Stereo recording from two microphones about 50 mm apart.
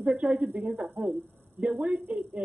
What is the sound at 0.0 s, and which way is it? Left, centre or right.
Speech, right.